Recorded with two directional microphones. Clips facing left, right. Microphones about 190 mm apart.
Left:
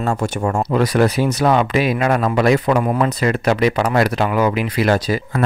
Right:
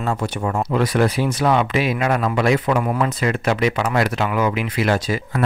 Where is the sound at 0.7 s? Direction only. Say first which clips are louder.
Left 3 dB; 40° left (ahead or behind).